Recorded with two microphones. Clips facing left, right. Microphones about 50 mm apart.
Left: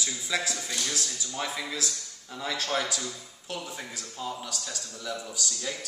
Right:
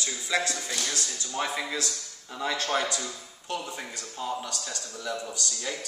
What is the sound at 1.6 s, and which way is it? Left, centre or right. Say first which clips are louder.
A man's voice: right 2 dB; centre.